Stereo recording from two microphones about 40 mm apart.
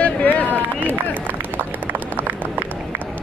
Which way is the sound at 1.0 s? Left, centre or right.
Right.